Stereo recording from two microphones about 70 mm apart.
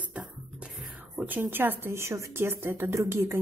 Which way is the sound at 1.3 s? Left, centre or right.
Right.